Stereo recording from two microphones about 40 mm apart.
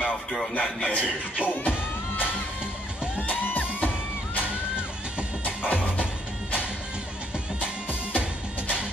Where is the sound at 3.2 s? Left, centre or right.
Left.